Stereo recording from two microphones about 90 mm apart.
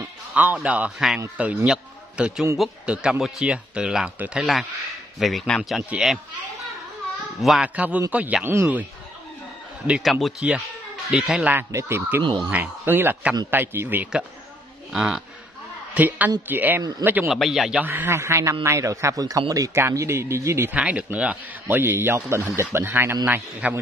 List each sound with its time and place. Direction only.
0.3 s a man's voice: 20° right (ahead or behind)
7.6 s speech: 15° right (ahead or behind)
9.8 s speech: 10° right (ahead or behind)
11.7 s speech: 30° right (ahead or behind)
12.2 s speech: 65° right (ahead or behind)
12.4 s speech: 20° right (ahead or behind)
14.9 s speech: 5° right (ahead or behind)
15.9 s a woman's voice: 20° right (ahead or behind)
17.3 s speech: centre (ahead or behind)
17.8 s a man's voice: 25° right (ahead or behind)
20.7 s speech: 15° right (ahead or behind)